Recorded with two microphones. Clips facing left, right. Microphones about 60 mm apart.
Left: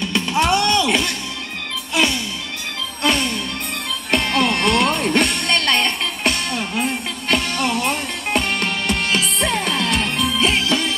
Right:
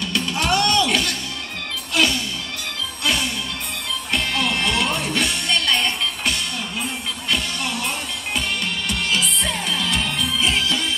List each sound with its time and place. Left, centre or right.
0.0 s music: left
3.0 s music: left